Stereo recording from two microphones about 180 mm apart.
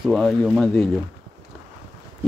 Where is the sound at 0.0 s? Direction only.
Centre (ahead or behind).